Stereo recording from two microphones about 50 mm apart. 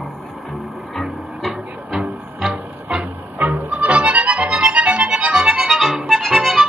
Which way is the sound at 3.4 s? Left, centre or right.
Right.